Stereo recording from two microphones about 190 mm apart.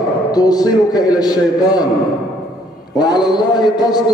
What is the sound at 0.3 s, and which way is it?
A man's voice, 20° left (ahead or behind).